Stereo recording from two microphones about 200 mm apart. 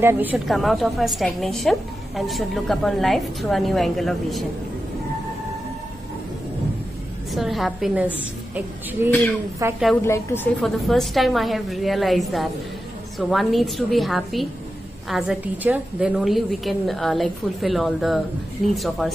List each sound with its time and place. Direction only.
0.0 s a woman's voice: 10° right (ahead or behind)
7.3 s a woman's voice: centre (ahead or behind)
9.6 s a woman's voice: 15° right (ahead or behind)
10.0 s a woman's voice: 10° left (ahead or behind)